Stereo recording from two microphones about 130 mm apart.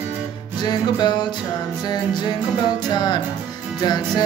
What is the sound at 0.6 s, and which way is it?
Music, 35° left (ahead or behind).